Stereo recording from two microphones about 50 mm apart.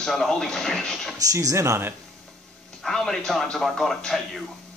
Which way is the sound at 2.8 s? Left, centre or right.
Centre.